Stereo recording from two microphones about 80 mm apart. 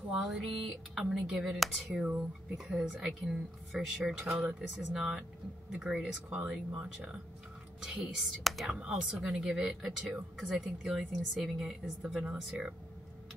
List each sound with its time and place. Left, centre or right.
0.1 s speech: centre
4.3 s speech: centre
4.6 s speech: centre
7.8 s speech: centre
11.3 s speech: centre
11.6 s speech: centre